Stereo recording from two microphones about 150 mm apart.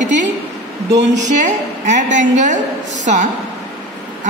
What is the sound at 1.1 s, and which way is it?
A woman's voice, 55° right (ahead or behind).